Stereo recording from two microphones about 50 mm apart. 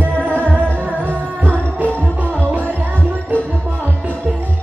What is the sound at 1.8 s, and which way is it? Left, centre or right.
Music, left.